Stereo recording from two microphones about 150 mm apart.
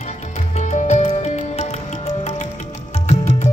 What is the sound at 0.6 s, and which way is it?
Music, 50° left (ahead or behind).